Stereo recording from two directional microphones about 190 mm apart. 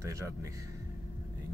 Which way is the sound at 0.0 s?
15° right (ahead or behind).